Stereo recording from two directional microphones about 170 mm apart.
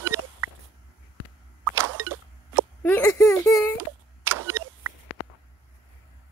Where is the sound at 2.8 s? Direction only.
15° left (ahead or behind).